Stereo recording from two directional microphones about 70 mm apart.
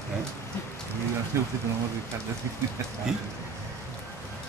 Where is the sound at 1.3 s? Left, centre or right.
Right.